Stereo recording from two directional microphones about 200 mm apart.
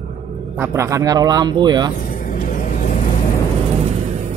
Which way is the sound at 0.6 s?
15° right (ahead or behind).